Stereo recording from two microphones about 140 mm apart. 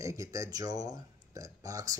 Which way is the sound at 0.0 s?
20° right (ahead or behind).